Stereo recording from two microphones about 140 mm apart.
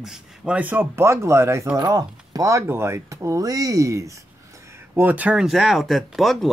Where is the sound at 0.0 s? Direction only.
5° right (ahead or behind).